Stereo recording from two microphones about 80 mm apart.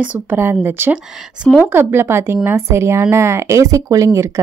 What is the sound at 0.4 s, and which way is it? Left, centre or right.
Speech, right.